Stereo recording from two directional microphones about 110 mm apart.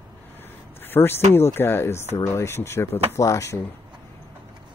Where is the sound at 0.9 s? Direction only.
20° left (ahead or behind).